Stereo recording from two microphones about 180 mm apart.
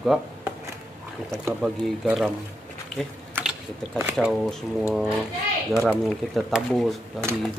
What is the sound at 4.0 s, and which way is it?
Speech, 10° right (ahead or behind).